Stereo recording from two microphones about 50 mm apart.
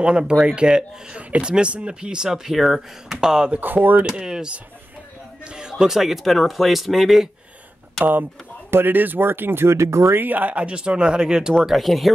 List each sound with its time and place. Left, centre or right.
0.0 s speech: centre
3.5 s speech: right
4.0 s speech: centre
5.5 s speech: centre
8.0 s speech: right
10.1 s speech: right
10.6 s speech: right
11.6 s speech: centre